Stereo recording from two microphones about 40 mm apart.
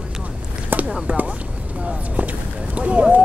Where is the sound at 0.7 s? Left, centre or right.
Right.